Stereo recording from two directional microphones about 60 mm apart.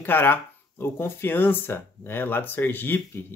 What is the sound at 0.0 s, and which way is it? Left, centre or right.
Speech, left.